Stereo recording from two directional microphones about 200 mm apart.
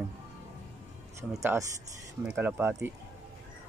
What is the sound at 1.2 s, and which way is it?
Speech, 15° right (ahead or behind).